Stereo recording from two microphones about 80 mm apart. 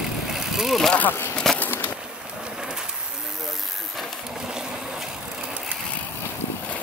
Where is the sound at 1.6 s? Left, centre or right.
Left.